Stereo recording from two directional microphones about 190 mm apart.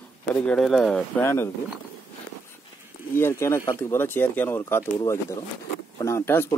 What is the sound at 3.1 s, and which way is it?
Speech, 15° left (ahead or behind).